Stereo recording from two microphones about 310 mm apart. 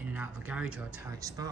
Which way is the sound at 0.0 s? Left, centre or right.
Centre.